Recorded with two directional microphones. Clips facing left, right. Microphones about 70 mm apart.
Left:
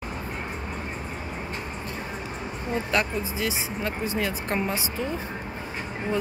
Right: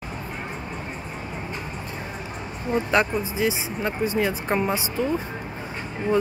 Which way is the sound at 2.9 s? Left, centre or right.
Right.